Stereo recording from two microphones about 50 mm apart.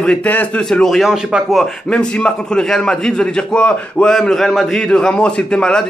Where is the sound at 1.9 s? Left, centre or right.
Centre.